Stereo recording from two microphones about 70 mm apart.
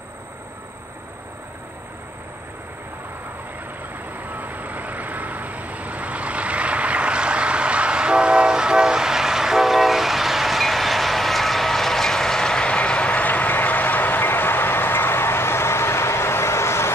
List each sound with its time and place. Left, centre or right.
4.2 s vehicle: right; by 16.9 s left